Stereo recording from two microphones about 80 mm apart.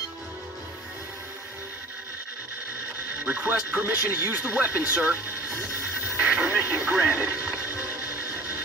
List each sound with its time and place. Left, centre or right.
3.3 s speech: right